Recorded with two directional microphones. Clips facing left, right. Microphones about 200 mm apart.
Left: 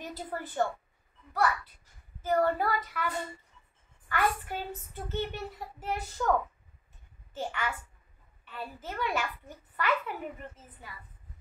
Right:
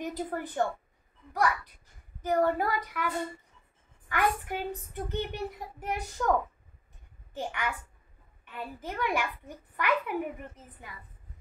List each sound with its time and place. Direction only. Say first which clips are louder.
0.0 s a woman's voice: right 5 dB; 15° right (ahead or behind)
4.1 s a child's voice: right 1 dB; 15° right (ahead or behind)
7.3 s a child's voice: right 1 dB; 15° right (ahead or behind)